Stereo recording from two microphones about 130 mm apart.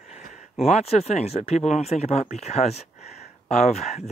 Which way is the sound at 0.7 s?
55° left (ahead or behind).